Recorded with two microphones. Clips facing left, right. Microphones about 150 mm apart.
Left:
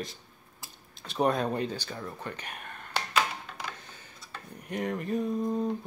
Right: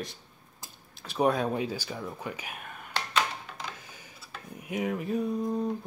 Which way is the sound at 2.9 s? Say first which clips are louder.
Left 1 dB; 5° left (ahead or behind).